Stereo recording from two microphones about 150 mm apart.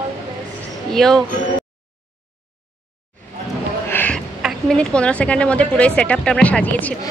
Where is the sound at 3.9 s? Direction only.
10° left (ahead or behind).